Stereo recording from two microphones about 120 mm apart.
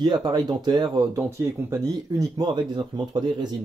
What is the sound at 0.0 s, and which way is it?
Speech, 35° right (ahead or behind).